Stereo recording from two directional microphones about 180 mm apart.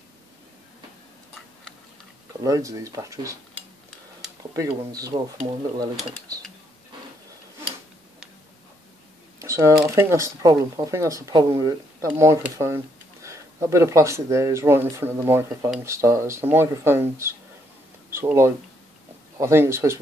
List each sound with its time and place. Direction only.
2.4 s speech: 20° right (ahead or behind)
4.4 s speech: 20° right (ahead or behind)
9.4 s speech: 15° right (ahead or behind)